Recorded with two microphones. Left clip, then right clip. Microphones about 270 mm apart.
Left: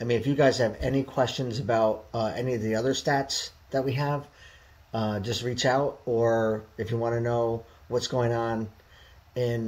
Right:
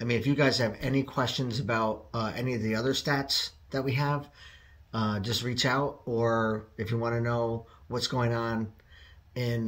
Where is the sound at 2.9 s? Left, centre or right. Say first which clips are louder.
Left 2 dB; right.